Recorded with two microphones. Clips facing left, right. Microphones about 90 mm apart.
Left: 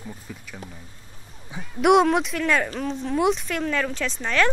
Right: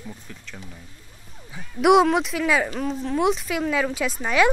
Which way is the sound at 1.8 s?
Centre (ahead or behind).